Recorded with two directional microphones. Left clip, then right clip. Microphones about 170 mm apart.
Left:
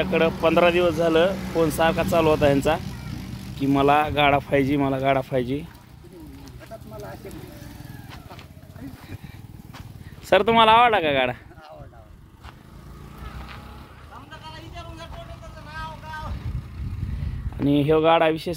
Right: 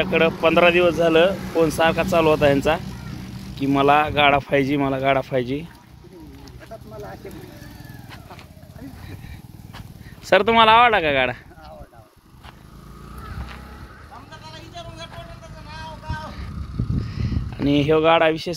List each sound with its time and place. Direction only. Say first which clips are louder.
0.0 s speech: right 2 dB; centre (ahead or behind)
10.2 s speech: right 2 dB; centre (ahead or behind)
17.6 s speech: right 2 dB; centre (ahead or behind)